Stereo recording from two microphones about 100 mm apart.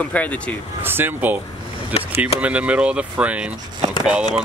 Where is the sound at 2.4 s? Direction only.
15° right (ahead or behind).